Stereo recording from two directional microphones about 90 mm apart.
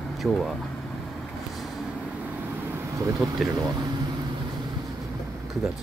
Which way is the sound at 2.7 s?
25° right (ahead or behind).